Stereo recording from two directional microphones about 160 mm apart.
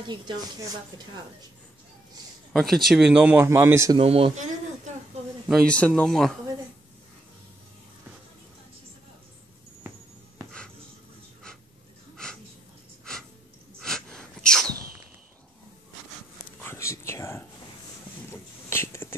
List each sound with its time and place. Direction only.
0.0 s speech: 30° right (ahead or behind)
2.5 s speech: centre (ahead or behind); by 4.0 s 20° right (ahead or behind)
4.0 s speech: 40° right (ahead or behind)
5.5 s speech: 5° left (ahead or behind)
12.2 s wheeze: 5° left (ahead or behind)
13.7 s sneeze: 5° left (ahead or behind)
16.6 s whispering: 20° left (ahead or behind)